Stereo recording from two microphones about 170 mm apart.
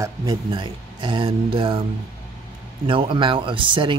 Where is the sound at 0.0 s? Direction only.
20° right (ahead or behind).